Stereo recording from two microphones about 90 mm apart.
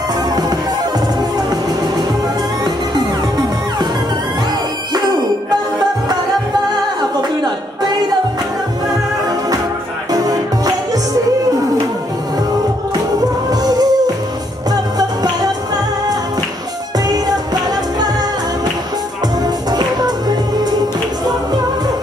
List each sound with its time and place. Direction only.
1.5 s music: 45° right (ahead or behind)
4.9 s music: 50° right (ahead or behind)
7.0 s a sound: 50° right (ahead or behind)
10.1 s music: 45° right (ahead or behind)
13.5 s music: 45° right (ahead or behind)
17.1 s music: 45° right (ahead or behind)
19.4 s music: 45° right (ahead or behind)